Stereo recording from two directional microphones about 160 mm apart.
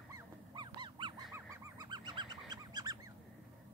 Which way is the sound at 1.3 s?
20° right (ahead or behind).